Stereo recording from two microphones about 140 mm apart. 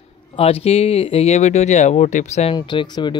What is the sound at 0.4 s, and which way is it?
Speech, 45° left (ahead or behind).